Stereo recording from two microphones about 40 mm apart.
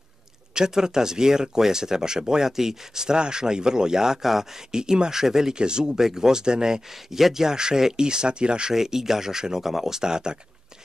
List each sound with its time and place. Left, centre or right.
0.6 s speech: centre
8.7 s speech: centre